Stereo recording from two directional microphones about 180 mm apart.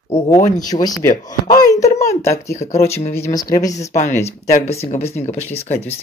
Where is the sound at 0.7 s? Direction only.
20° left (ahead or behind).